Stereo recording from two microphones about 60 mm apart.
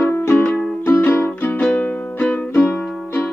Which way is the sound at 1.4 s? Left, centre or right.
Left.